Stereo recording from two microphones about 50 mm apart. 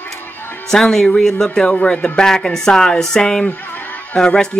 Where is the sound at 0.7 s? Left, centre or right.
Centre.